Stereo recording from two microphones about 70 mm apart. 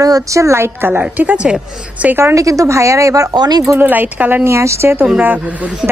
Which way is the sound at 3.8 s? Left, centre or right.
Right.